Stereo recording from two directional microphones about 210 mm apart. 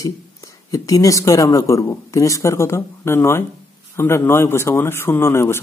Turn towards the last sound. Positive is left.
turn(degrees=10)  # may be behind; listen again after turning